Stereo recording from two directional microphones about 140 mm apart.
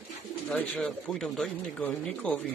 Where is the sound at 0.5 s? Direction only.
10° left (ahead or behind).